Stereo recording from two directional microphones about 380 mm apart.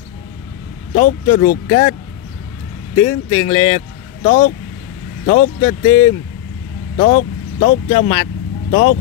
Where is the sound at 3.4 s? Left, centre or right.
Centre.